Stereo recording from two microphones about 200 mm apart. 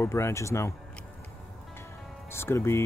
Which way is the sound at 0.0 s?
15° left (ahead or behind).